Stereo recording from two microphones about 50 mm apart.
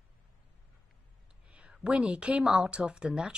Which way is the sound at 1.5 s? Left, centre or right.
Right.